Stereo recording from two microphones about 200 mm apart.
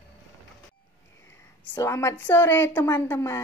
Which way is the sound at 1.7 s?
15° left (ahead or behind).